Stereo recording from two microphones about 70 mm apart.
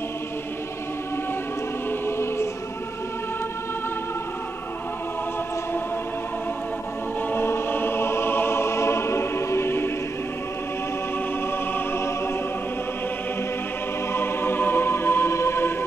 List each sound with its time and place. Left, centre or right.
1.9 s choir: left
7.3 s music: left
11.7 s music: left
14.1 s music: left